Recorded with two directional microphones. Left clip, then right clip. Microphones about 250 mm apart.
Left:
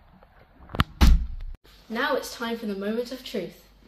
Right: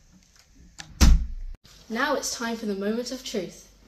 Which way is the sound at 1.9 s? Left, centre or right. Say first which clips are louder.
Even; centre.